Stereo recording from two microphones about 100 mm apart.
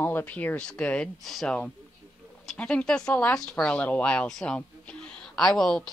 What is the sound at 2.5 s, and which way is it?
Speech, 10° left (ahead or behind).